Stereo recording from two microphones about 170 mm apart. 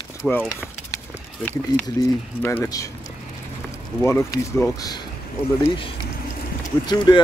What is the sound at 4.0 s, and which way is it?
Speech, 15° left (ahead or behind).